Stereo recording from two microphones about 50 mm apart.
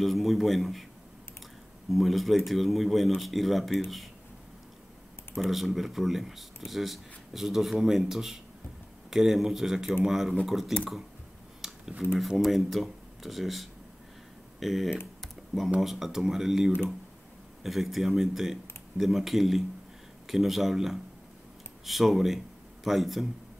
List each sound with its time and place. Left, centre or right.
0.0 s speech: centre
1.9 s speech: centre
5.4 s speech: centre
11.6 s a sound: centre
12.0 s speech: centre